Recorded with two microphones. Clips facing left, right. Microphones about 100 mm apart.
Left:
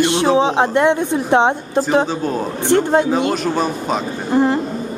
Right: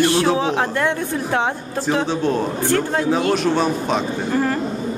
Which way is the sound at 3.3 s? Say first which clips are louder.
Right 1 dB; centre (ahead or behind).